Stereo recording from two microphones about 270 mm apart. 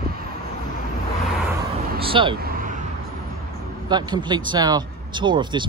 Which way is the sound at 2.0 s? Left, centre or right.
Centre.